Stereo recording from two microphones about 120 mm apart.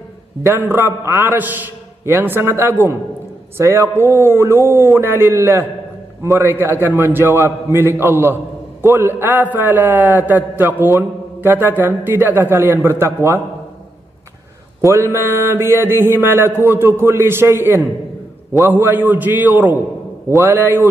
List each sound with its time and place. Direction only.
0.4 s a man's voice: 15° right (ahead or behind)
14.8 s a man's voice: 20° right (ahead or behind)